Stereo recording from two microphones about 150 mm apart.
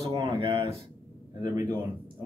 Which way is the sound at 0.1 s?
30° right (ahead or behind).